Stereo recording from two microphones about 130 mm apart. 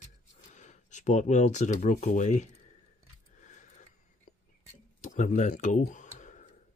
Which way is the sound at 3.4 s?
70° left (ahead or behind).